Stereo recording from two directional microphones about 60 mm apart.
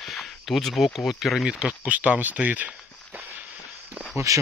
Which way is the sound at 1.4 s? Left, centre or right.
Centre.